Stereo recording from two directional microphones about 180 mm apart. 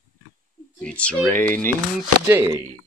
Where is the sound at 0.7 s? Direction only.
5° left (ahead or behind).